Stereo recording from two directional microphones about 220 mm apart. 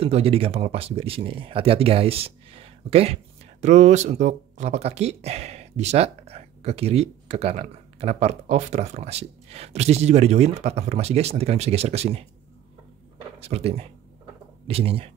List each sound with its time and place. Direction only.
0.0 s speech: 25° right (ahead or behind)
13.4 s speech: 30° right (ahead or behind)